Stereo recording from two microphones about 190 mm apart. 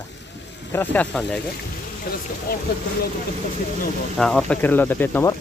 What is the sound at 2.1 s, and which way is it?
Speech, 50° left (ahead or behind).